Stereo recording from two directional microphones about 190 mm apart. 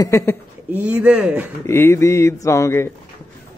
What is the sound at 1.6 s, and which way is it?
A man's voice, 15° left (ahead or behind).